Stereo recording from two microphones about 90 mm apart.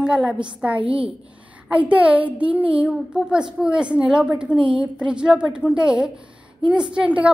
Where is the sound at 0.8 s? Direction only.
80° right.